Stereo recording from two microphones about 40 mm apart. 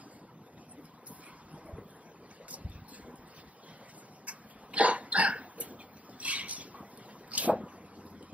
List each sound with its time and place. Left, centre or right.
2.5 s boat: right
4.3 s dog: right